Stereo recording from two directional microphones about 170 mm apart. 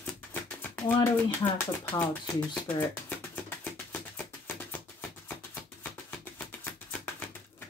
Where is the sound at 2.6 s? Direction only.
10° left (ahead or behind).